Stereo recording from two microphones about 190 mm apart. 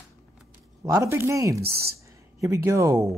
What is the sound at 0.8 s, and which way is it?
Speech, 15° right (ahead or behind).